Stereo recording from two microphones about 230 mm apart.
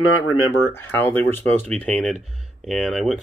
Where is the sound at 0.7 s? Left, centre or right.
Centre.